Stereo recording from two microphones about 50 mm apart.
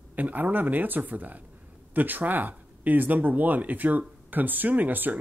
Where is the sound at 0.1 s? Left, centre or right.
Right.